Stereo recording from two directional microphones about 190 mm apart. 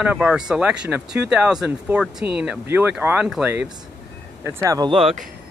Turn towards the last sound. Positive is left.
turn(degrees=-25)  # may be behind; listen again after turning